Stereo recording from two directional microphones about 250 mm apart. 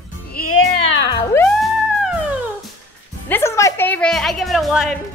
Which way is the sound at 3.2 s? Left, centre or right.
Centre.